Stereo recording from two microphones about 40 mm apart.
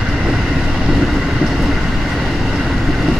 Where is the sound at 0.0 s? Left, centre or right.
Centre.